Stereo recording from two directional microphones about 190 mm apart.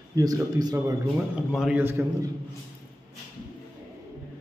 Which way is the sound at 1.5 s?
5° right (ahead or behind).